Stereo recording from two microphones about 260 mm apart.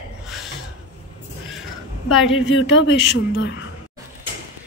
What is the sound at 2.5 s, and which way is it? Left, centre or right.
Speech, left.